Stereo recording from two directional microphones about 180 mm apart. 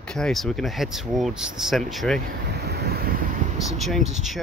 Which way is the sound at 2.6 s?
65° right (ahead or behind).